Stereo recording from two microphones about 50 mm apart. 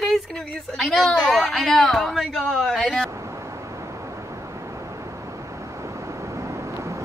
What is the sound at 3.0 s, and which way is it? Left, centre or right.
Vehicle, right.